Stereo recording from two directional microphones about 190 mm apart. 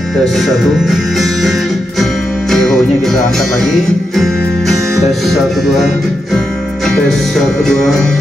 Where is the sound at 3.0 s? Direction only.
Centre (ahead or behind).